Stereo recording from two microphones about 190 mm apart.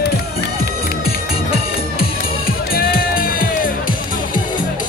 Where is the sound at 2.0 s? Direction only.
50° left (ahead or behind).